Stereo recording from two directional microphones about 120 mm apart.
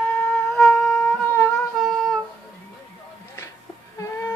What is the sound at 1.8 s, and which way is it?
Wind instrument, 5° left (ahead or behind).